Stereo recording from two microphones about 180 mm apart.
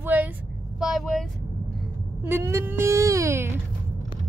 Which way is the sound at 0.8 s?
Centre (ahead or behind).